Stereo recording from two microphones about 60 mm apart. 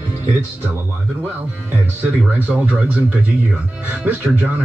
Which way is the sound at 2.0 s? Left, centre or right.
Right.